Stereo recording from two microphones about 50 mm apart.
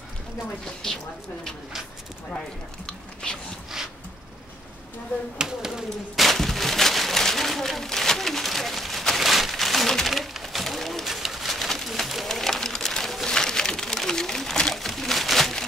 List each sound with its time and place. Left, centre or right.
0.8 s speech: centre
2.9 s speech: centre
5.4 s a sound: centre